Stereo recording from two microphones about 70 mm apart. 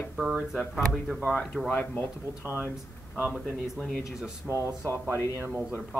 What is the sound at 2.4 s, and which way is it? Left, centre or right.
Speech, right.